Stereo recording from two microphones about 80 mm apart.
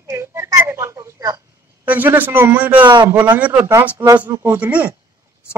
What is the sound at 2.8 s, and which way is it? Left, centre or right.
Speech, right.